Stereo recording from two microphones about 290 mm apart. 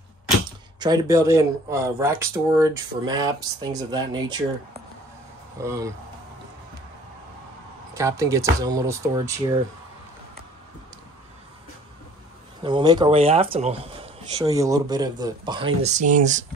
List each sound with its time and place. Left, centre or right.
0.5 s speech: centre
5.6 s speech: centre
8.0 s speech: centre
12.6 s speech: centre